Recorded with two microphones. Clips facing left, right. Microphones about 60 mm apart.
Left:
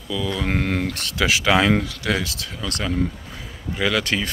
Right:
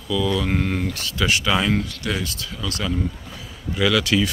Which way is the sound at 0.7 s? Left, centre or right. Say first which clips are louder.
Left 1 dB; left.